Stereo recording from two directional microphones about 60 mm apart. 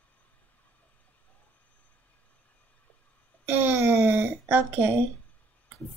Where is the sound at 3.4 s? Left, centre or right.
Right.